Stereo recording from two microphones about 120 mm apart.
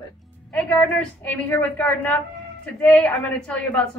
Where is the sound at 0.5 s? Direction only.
10° left (ahead or behind).